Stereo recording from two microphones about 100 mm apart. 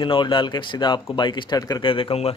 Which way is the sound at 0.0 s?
55° left (ahead or behind).